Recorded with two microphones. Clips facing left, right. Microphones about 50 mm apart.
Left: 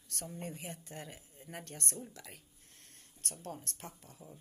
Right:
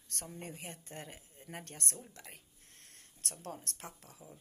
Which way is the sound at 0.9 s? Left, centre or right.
Right.